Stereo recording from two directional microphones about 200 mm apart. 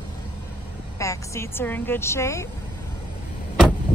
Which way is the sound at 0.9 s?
15° left (ahead or behind).